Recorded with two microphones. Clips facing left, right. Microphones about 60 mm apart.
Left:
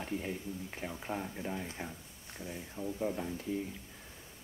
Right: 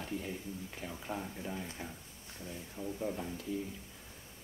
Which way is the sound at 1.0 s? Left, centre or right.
Centre.